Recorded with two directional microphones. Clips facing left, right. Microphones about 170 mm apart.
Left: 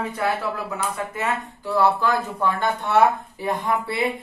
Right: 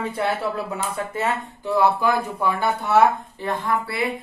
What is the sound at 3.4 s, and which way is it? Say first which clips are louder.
Speech: left 1 dB; 15° left (ahead or behind).